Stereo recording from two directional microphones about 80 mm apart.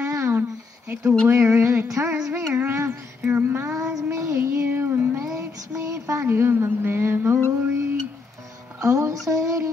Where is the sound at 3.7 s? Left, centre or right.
Right.